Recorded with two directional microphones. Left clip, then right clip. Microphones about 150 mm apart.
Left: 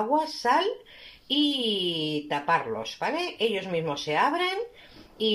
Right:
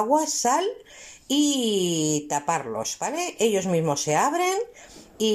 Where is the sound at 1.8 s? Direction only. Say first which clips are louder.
Right 3 dB; 10° right (ahead or behind).